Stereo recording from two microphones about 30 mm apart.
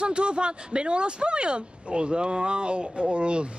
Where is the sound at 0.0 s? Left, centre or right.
Right.